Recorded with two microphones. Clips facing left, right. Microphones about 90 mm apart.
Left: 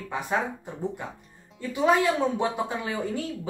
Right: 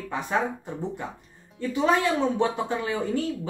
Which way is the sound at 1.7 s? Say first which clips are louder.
Left 1 dB; 10° left (ahead or behind).